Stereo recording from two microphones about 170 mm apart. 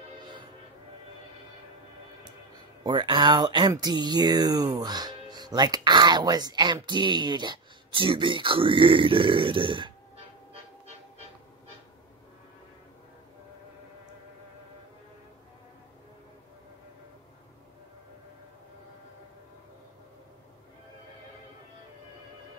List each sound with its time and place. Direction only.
2.8 s speech: 25° right (ahead or behind)